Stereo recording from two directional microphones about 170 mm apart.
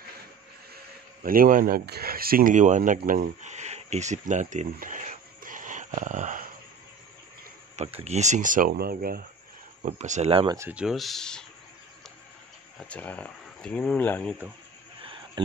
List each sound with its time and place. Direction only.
1.2 s speech: 55° right (ahead or behind)
3.0 s a sound: 55° right (ahead or behind)
8.0 s speech: 40° right (ahead or behind); by 9.2 s 60° right (ahead or behind)
9.8 s speech: 45° right (ahead or behind)
10.7 s speech: 5° right (ahead or behind)
12.8 s speech: 10° left (ahead or behind)
15.0 s a sound: 30° right (ahead or behind)